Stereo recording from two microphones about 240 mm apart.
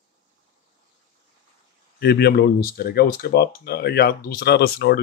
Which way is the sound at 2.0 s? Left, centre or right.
Left.